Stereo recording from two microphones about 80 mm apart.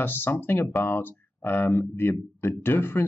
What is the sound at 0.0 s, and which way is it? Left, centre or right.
Speech, left.